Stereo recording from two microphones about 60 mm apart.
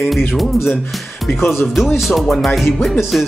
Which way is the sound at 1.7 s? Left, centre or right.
Centre.